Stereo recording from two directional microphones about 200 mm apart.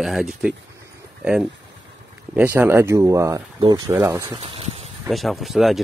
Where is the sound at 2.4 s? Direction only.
10° right (ahead or behind).